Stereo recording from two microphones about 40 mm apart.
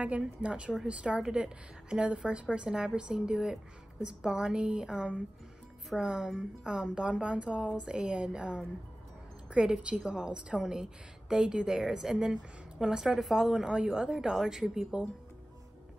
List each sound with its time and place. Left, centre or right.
0.0 s a woman's voice: right; by 15.0 s centre